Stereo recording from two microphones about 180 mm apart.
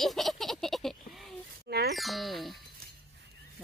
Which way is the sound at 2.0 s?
Centre (ahead or behind).